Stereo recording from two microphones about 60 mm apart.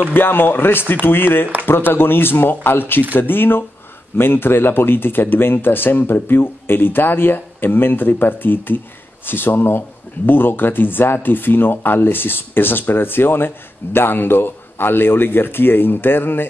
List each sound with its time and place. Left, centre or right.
0.1 s speech: left